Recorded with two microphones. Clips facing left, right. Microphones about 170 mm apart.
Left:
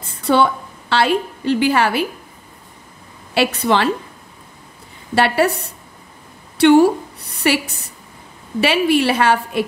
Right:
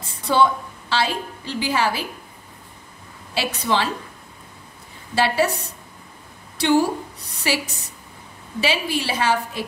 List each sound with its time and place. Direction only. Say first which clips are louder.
0.0 s a woman's voice: left 3 dB; 60° left (ahead or behind)
3.3 s a woman's voice: left 6 dB; 60° left (ahead or behind)
5.1 s a woman's voice: left 4 dB; 60° left (ahead or behind)